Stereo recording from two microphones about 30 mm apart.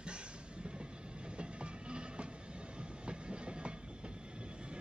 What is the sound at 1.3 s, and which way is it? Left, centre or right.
Train, right.